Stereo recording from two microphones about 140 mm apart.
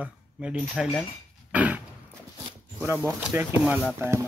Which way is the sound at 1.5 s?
10° right (ahead or behind).